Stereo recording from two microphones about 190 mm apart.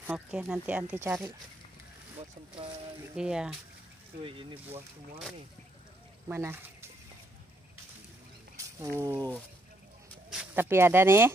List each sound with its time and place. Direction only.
0.0 s speech: 10° right (ahead or behind)
3.2 s speech: 5° right (ahead or behind)
4.2 s speech: 30° right (ahead or behind)
6.2 s speech: 10° right (ahead or behind)
8.5 s speech: 15° right (ahead or behind)
10.3 s speech: 10° right (ahead or behind)